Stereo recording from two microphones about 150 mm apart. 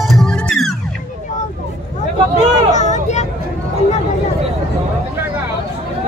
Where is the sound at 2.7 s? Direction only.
50° left (ahead or behind).